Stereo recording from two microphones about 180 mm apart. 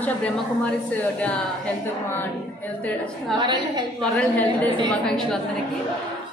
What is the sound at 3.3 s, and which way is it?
Speech, 25° right (ahead or behind).